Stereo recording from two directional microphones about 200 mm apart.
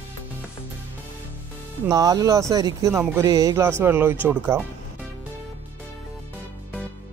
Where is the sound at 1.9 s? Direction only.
20° right (ahead or behind).